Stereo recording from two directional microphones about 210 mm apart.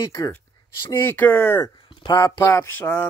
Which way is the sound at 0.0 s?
15° left (ahead or behind).